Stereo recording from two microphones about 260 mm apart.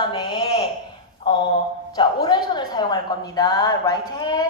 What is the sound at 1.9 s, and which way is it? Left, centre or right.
A woman's voice, centre.